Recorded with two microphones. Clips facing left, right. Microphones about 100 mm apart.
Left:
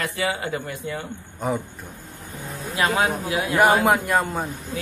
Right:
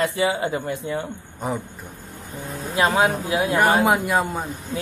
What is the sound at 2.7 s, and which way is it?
Speech, 30° right (ahead or behind).